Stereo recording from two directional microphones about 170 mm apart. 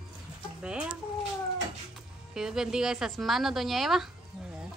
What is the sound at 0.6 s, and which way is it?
Speech, 5° right (ahead or behind).